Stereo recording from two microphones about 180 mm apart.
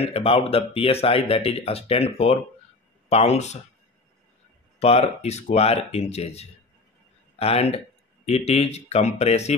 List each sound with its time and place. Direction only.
0.0 s speech: 35° left (ahead or behind)
4.7 s speech: 35° left (ahead or behind)